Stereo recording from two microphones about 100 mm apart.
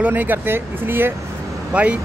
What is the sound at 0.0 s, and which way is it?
Speech, 20° right (ahead or behind).